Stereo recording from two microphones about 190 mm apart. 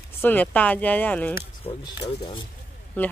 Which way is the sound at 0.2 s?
10° left (ahead or behind).